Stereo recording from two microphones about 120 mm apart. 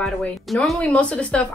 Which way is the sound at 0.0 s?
5° left (ahead or behind).